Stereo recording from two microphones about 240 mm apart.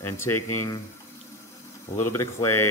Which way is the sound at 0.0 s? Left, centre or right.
Centre.